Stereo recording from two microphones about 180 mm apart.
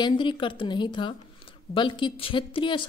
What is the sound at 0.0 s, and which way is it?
Speech, 25° left (ahead or behind).